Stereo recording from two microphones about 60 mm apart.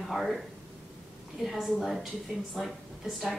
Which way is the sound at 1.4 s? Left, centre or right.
Centre.